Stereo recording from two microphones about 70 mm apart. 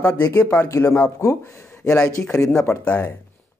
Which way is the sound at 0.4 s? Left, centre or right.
Left.